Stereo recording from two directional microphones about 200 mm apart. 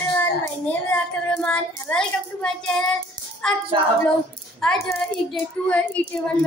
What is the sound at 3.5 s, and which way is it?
A child's voice, 5° left (ahead or behind).